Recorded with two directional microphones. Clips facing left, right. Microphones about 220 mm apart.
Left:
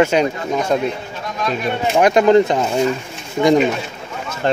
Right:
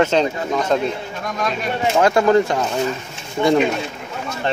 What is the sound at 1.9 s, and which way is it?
Speech, 20° left (ahead or behind).